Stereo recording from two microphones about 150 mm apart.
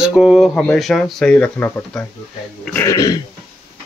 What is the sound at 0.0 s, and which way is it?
Speech, 5° right (ahead or behind).